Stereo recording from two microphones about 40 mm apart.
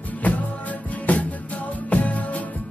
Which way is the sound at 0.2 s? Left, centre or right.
Left.